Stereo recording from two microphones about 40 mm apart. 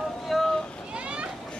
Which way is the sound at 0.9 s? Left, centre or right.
Right.